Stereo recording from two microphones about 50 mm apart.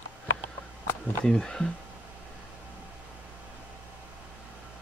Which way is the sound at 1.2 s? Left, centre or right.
Centre.